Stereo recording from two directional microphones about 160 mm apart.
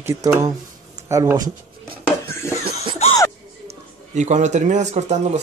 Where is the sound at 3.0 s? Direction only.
40° left (ahead or behind).